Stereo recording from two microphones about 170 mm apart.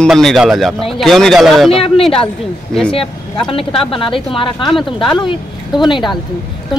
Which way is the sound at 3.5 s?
35° left (ahead or behind).